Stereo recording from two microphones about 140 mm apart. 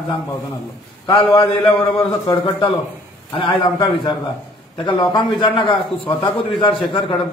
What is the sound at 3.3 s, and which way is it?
A man's voice, 40° left (ahead or behind).